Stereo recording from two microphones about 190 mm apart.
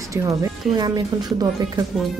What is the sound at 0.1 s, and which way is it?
Speech, 15° right (ahead or behind).